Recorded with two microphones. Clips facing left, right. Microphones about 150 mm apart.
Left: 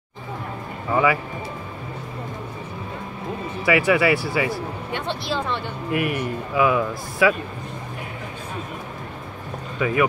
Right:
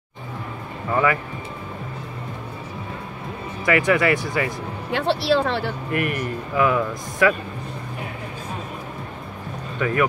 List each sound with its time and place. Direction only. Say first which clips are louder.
0.9 s speech: left 1 dB; 5° left (ahead or behind)
3.6 s a man's voice: even; 5° left (ahead or behind)
4.9 s speech: right 8 dB; 90° right
5.9 s a man's voice: left 4 dB; 5° left (ahead or behind)
9.8 s speech: left 1 dB; 5° left (ahead or behind)